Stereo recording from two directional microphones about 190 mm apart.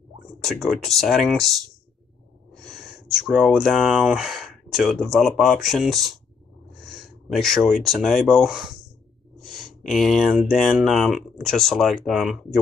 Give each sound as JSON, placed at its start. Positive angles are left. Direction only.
{"t": 0.4, "sound": "speech", "side_deg": 0}
{"t": 2.7, "sound": "speech", "side_deg": 0}